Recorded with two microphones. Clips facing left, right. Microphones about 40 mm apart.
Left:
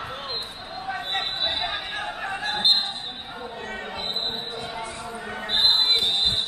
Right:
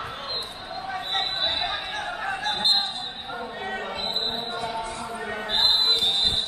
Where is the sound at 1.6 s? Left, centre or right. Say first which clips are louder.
Even; centre.